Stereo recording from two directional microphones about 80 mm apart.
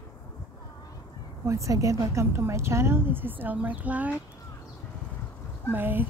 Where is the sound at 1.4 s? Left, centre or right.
Right; by 4.1 s centre.